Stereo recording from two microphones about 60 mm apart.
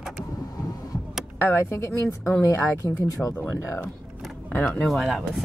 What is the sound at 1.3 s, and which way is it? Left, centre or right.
A woman's voice, left.